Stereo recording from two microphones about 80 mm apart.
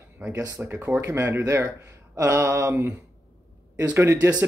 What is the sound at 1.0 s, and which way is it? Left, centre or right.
Speech, right.